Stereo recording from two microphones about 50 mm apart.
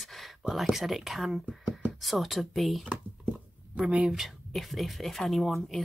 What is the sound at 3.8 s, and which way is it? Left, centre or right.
Speech, right.